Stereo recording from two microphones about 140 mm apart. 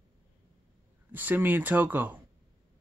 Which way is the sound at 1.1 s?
15° right (ahead or behind).